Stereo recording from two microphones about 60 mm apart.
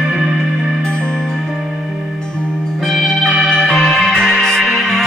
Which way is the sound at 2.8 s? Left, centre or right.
Centre.